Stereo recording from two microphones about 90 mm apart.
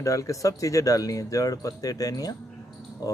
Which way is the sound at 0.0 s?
35° left (ahead or behind).